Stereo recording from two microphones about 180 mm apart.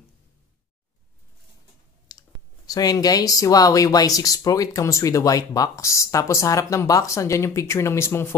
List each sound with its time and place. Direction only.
2.0 s speech: 20° left (ahead or behind)